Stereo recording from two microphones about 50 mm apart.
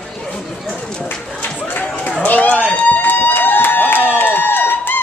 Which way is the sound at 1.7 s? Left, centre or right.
Left.